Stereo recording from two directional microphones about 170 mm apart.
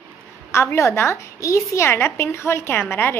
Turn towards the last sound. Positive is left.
turn(degrees=10)  # may be behind; listen again after turning